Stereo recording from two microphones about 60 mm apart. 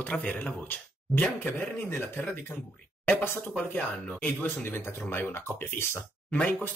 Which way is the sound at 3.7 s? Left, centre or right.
Left.